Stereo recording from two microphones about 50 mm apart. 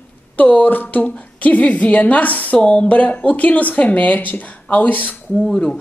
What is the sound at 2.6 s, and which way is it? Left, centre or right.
Speech, left.